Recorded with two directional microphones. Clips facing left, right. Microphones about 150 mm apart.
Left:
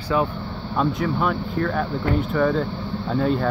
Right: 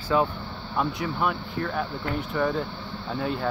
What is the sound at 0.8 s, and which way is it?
Speech, 10° right (ahead or behind).